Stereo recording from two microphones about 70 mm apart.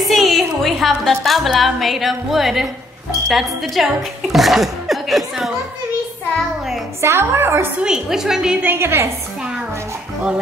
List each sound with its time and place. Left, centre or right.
0.0 s a woman's voice: centre
7.0 s a woman's voice: right
7.8 s a woman's voice: centre
8.6 s a woman's voice: right